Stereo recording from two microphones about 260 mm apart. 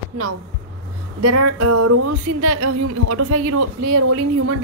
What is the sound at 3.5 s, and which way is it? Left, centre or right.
Speech, right.